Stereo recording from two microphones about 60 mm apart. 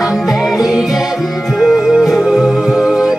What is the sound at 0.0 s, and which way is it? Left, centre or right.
Music, centre.